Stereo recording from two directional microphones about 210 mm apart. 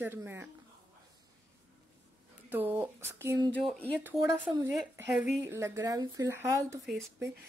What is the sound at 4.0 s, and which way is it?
Speech, 10° right (ahead or behind).